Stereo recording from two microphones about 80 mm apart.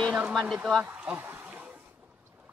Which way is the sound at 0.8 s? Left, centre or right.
Right.